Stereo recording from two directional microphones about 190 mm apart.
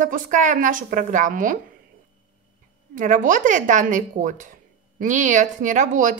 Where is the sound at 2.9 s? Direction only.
45° right (ahead or behind).